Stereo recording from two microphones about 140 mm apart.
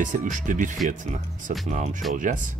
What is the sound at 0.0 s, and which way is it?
Speech, 65° right (ahead or behind).